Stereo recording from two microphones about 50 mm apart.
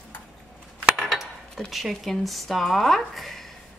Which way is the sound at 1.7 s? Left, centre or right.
Centre.